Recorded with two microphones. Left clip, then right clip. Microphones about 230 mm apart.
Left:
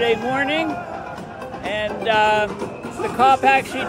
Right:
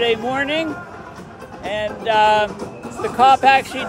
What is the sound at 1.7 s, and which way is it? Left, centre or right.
Speech, centre.